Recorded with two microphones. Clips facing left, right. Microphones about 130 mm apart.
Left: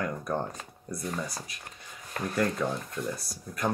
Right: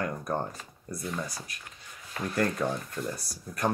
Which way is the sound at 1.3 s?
45° left (ahead or behind).